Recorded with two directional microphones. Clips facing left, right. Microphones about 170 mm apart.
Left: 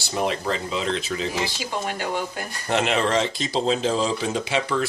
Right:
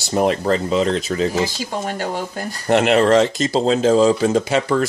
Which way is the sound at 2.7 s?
55° right (ahead or behind).